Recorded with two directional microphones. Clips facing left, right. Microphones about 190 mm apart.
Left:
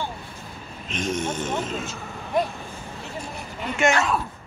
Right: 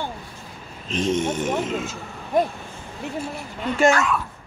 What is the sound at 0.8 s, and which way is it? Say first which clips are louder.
Speech: right 5 dB; 30° right (ahead or behind).